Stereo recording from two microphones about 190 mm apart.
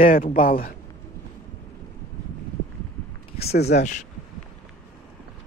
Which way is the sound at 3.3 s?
55° left (ahead or behind).